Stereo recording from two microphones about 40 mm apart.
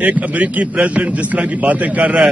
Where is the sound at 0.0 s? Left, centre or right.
Right.